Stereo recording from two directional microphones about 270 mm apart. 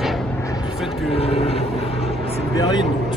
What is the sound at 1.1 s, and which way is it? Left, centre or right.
Vehicle, left.